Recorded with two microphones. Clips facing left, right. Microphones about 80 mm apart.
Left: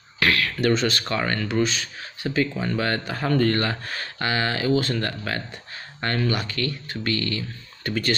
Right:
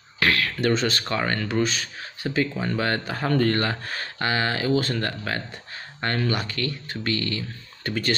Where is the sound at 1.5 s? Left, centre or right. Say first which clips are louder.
Left 1 dB; right.